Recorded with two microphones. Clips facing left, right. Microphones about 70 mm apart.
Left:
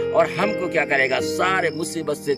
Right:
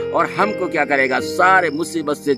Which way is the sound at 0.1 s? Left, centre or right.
Right.